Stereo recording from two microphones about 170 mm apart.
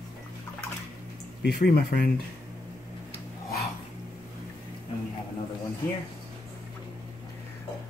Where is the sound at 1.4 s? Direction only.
70° left (ahead or behind).